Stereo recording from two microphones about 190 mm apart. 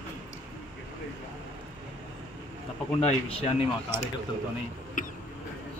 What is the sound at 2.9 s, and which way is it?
Speech, 30° left (ahead or behind).